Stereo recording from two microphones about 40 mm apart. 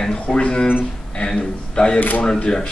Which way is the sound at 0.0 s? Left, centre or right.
Left.